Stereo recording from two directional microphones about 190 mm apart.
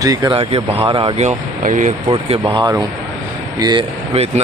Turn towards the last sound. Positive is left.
turn(degrees=-35)  # may be behind; listen again after turning